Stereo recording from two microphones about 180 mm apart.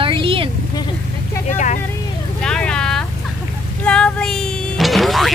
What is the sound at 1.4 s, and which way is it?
Speech, 45° left (ahead or behind).